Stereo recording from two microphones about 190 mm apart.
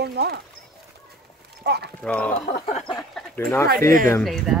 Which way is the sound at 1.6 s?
60° right (ahead or behind).